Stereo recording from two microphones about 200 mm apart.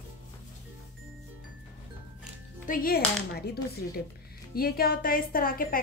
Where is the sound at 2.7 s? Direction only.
45° left (ahead or behind).